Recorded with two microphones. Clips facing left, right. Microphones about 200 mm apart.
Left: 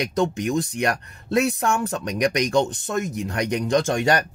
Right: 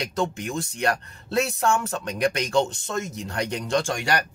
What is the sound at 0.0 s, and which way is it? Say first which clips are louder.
Speech: left 5 dB; 20° left (ahead or behind).